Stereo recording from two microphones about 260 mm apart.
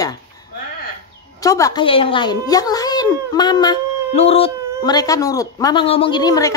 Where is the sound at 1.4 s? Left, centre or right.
Centre.